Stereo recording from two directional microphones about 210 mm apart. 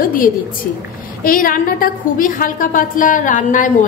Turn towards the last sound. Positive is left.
turn(degrees=35)  # may be behind; listen again after turning